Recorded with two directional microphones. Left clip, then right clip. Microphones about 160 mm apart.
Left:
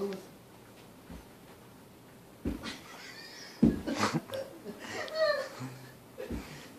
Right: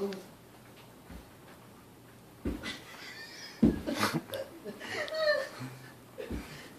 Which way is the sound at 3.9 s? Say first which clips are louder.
Even; 15° left (ahead or behind).